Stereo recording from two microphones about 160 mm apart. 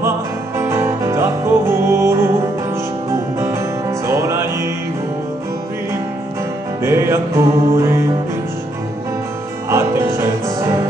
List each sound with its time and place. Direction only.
0.6 s music: 15° right (ahead or behind)
6.8 s music: 15° right (ahead or behind)
9.7 s music: 15° right (ahead or behind)